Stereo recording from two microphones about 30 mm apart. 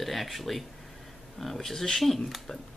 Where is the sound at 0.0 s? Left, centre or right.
Centre.